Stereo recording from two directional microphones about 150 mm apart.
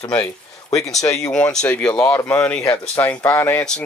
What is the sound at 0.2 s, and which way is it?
Speech, 20° left (ahead or behind).